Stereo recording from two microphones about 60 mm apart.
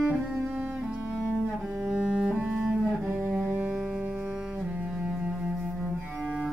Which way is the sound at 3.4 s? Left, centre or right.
Right.